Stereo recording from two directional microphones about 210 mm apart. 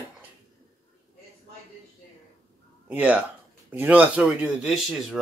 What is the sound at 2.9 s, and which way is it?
Speech, 5° right (ahead or behind).